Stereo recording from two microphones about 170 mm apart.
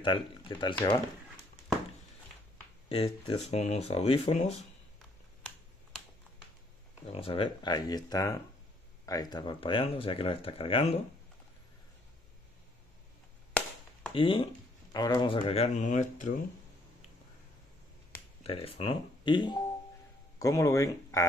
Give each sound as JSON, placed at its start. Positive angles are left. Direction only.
{"t": 0.0, "sound": "speech", "side_deg": 30}
{"t": 2.9, "sound": "speech", "side_deg": 30}
{"t": 7.1, "sound": "speech", "side_deg": 35}
{"t": 13.5, "sound": "chop", "side_deg": 10}
{"t": 14.1, "sound": "speech", "side_deg": 30}
{"t": 18.4, "sound": "speech", "side_deg": 35}